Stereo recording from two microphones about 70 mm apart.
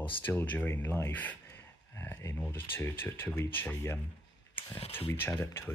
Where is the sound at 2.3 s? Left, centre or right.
Left.